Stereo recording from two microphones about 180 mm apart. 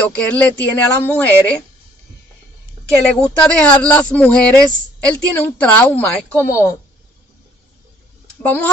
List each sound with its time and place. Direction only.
0.0 s a woman's voice: 5° left (ahead or behind)
3.1 s a woman's voice: 5° left (ahead or behind)
8.4 s speech: 10° left (ahead or behind)